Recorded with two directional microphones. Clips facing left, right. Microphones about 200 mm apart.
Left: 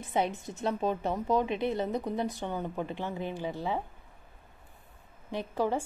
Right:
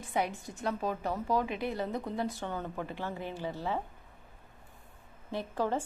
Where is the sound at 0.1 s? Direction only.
25° left (ahead or behind).